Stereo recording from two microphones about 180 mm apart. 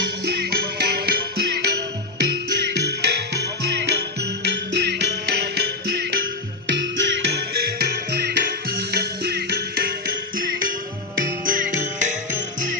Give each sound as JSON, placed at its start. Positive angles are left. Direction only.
{"t": 0.2, "sound": "music", "side_deg": -60}
{"t": 6.7, "sound": "music", "side_deg": -90}